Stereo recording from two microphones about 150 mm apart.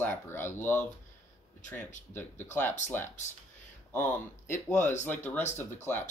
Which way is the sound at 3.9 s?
15° left (ahead or behind).